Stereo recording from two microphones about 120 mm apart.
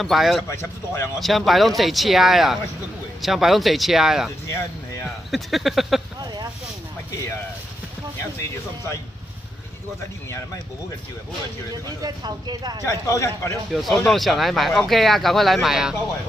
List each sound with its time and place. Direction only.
0.0 s speech: centre (ahead or behind)
0.5 s a man's voice: 20° left (ahead or behind)
1.2 s speech: centre (ahead or behind)
4.5 s a sound: 25° left (ahead or behind)
5.3 s speech: centre (ahead or behind)
8.2 s a man's voice: 20° left (ahead or behind)
11.7 s speech: 35° right (ahead or behind)
12.8 s a man's voice: 25° left (ahead or behind)
13.7 s speech: centre (ahead or behind)